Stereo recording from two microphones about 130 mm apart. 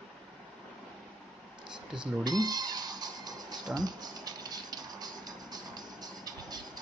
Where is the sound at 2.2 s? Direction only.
30° right (ahead or behind).